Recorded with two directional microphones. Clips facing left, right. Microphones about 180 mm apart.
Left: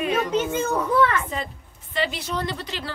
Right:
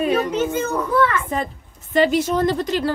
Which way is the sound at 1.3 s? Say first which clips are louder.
Right 6 dB; 50° right (ahead or behind).